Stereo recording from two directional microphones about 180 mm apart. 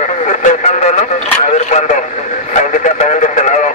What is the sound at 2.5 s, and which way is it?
Radio, 45° left (ahead or behind).